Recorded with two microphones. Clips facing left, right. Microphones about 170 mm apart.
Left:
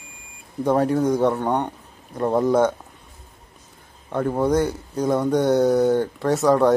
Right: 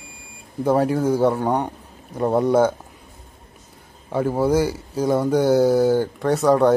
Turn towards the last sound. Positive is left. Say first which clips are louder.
# right 1 dB
turn(degrees=0)  # may be behind; listen again after turning